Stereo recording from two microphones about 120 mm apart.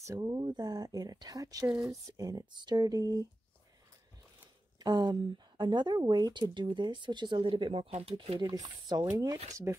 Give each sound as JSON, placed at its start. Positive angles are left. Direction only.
{"t": 0.0, "sound": "speech", "side_deg": -30}
{"t": 1.7, "sound": "speech", "side_deg": 0}
{"t": 2.1, "sound": "speech", "side_deg": -30}
{"t": 4.7, "sound": "speech", "side_deg": -35}
{"t": 8.4, "sound": "speech", "side_deg": -35}